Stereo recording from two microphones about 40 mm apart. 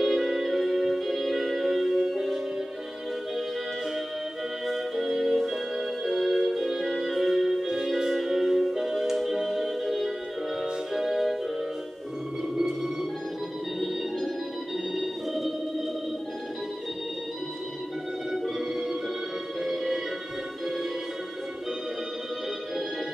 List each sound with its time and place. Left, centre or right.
0.0 s music: centre
4.9 s music: centre
12.5 s music: centre
15.0 s music: centre
18.6 s music: centre